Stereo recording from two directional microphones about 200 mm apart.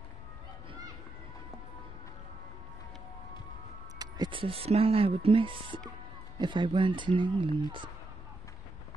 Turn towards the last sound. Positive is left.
turn(degrees=-25)  # may be behind; listen again after turning